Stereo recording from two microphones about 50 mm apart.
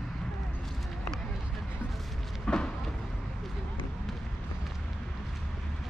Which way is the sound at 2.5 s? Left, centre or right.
Centre.